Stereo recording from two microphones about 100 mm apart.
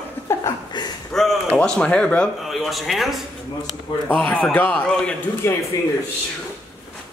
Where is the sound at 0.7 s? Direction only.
45° left (ahead or behind).